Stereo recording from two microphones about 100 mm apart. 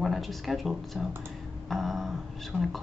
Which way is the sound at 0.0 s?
Centre (ahead or behind).